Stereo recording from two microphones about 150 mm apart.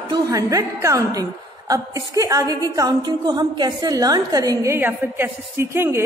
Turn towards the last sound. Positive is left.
turn(degrees=-15)  # may be behind; listen again after turning